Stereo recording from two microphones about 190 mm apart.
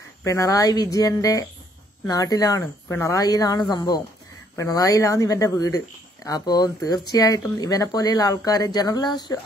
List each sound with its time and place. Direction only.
0.2 s speech: 20° left (ahead or behind)